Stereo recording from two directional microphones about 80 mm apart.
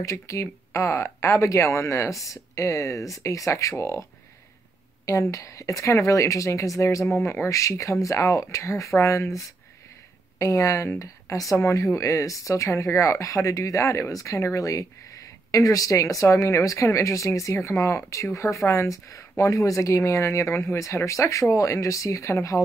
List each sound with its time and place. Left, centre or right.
0.0 s speech: left
5.0 s speech: left